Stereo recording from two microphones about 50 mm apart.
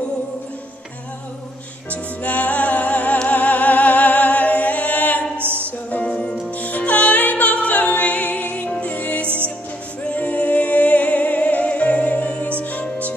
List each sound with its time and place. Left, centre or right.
1.9 s music: left
5.4 s music: right
5.9 s music: left
9.2 s music: right
10.0 s music: left